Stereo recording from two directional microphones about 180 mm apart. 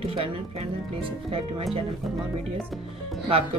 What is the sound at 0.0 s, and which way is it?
Speech, 30° right (ahead or behind).